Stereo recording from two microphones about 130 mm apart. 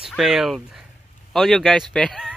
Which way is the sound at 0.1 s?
Centre (ahead or behind).